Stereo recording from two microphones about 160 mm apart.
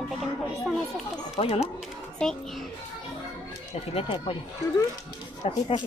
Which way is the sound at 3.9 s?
30° left (ahead or behind).